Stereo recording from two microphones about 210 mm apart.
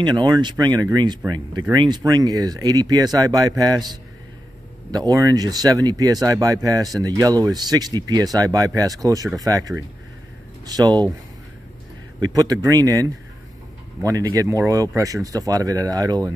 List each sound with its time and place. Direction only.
0.0 s speech: 20° right (ahead or behind)
12.2 s speech: 15° right (ahead or behind)